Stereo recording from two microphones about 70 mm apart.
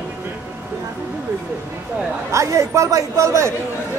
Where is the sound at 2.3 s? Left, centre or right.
Right.